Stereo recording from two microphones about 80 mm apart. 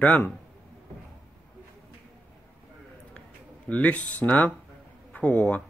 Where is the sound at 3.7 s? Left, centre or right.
Centre.